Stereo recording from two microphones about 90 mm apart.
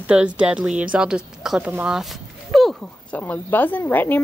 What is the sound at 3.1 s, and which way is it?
Speech, 15° left (ahead or behind).